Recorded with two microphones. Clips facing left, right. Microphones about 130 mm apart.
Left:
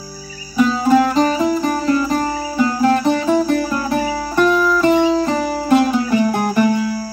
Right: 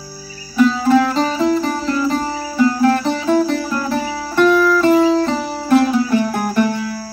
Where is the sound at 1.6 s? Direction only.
45° left (ahead or behind).